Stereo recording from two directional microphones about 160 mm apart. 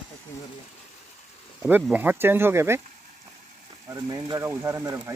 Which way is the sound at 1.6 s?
10° right (ahead or behind).